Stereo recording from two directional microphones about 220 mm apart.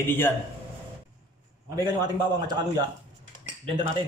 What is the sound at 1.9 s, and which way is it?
Speech, 20° right (ahead or behind).